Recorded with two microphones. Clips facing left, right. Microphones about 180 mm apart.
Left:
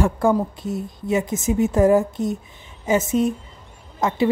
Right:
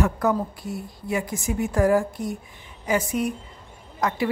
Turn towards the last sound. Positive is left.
turn(degrees=25)  # may be behind; listen again after turning